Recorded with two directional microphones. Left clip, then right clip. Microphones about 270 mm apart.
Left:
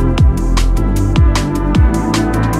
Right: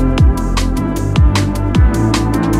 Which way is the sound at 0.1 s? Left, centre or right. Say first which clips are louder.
Right 1 dB; centre.